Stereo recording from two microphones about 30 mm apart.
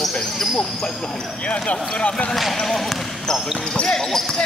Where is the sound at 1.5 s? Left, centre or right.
Left.